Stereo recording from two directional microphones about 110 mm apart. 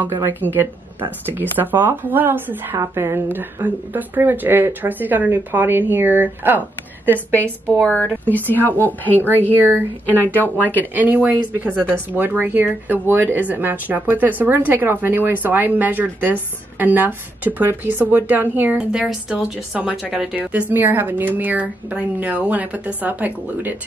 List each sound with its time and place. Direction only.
0.0 s speech: 20° right (ahead or behind)
7.8 s a woman's voice: 10° left (ahead or behind)
10.7 s speech: 15° right (ahead or behind)